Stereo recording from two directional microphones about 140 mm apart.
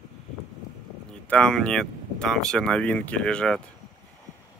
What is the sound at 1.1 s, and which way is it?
Speech, 5° left (ahead or behind).